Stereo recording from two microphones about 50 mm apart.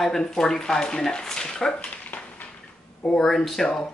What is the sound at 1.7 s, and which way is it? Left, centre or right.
Dog, left.